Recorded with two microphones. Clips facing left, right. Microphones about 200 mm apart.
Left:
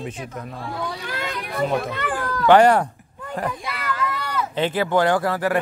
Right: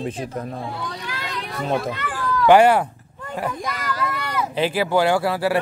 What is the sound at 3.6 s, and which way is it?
Speech, 40° right (ahead or behind).